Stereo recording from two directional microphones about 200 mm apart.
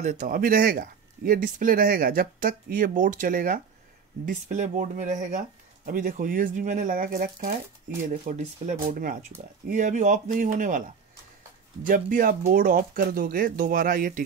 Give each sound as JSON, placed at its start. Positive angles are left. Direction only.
{"t": 0.0, "sound": "speech", "side_deg": -35}
{"t": 11.8, "sound": "speech", "side_deg": -45}